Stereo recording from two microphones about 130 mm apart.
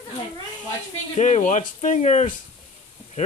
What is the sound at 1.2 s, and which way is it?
Speech, 65° left (ahead or behind).